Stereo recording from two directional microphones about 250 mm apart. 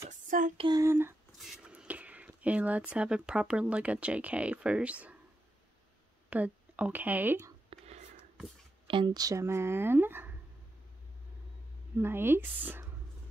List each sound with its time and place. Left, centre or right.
0.1 s female singing: right
0.7 s speech: centre
6.3 s speech: centre
7.7 s whispering: right
8.8 s speech: centre
12.0 s speech: centre